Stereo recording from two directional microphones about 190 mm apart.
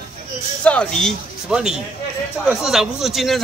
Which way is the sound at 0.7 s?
5° left (ahead or behind).